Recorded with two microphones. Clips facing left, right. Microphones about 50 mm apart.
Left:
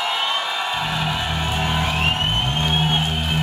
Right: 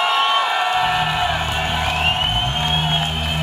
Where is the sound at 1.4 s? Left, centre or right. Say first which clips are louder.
Right 1 dB; centre.